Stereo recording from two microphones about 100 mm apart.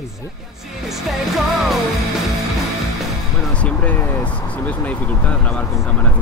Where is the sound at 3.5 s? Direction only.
15° left (ahead or behind).